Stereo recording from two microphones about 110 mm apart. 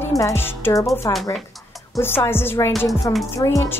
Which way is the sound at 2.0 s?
20° left (ahead or behind).